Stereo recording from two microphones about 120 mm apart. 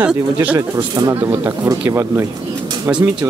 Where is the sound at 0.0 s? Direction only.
10° right (ahead or behind).